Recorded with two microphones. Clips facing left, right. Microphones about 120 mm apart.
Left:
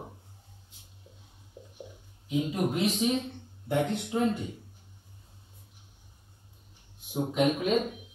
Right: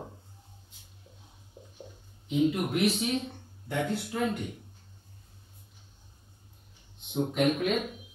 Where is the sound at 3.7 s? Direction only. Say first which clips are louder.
Left 3 dB; 20° left (ahead or behind).